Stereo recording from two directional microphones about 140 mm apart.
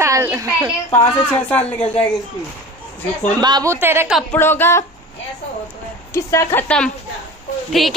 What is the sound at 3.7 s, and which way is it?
Speech, 20° right (ahead or behind).